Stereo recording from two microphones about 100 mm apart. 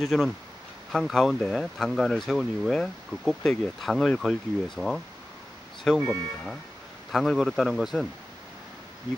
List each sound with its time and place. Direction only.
0.0 s speech: centre (ahead or behind)
5.9 s speech: 30° right (ahead or behind)
7.1 s speech: centre (ahead or behind)